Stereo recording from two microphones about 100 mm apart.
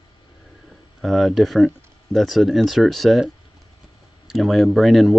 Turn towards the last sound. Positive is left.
turn(degrees=0)  # may be behind; listen again after turning